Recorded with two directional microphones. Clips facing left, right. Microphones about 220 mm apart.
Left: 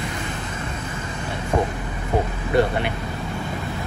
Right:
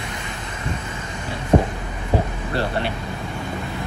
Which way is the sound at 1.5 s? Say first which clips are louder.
Right 5 dB; 30° right (ahead or behind).